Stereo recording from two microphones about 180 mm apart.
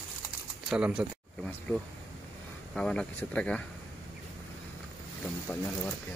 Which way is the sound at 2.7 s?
5° left (ahead or behind).